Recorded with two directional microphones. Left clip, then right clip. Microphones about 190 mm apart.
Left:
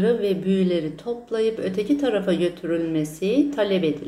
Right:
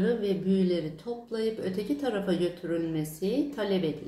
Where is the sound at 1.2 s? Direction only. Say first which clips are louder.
Left 8 dB; 20° right (ahead or behind).